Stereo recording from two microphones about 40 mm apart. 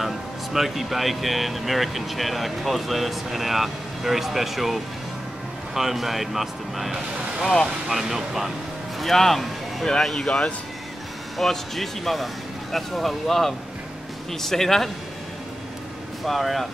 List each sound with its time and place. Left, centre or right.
0.0 s speech: centre
9.0 s speech: centre
9.8 s speech: centre
11.3 s speech: centre
16.3 s speech: centre